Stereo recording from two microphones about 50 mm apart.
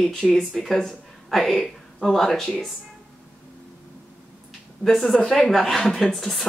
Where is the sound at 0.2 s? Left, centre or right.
Centre.